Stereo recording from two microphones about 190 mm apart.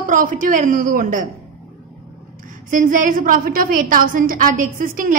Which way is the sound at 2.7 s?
45° right (ahead or behind).